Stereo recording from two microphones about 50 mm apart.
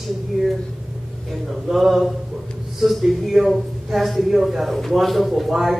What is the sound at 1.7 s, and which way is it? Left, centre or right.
A man's voice, centre.